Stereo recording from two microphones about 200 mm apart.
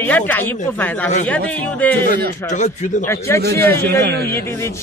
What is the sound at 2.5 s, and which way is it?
Speech, 35° left (ahead or behind).